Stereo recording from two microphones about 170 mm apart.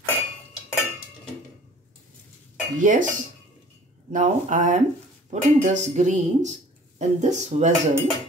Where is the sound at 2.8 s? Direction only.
50° right (ahead or behind).